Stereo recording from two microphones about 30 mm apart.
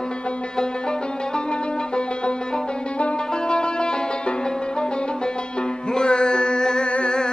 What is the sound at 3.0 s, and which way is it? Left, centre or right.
Music, left.